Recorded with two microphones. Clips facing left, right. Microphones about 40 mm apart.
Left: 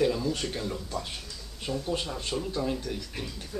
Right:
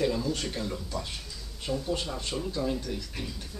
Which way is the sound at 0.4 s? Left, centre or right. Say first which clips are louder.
Left 1 dB; centre.